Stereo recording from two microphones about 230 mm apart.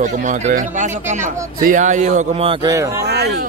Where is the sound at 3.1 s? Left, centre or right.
Right.